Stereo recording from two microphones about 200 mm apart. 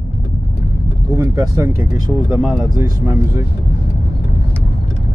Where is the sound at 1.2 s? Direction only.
15° right (ahead or behind).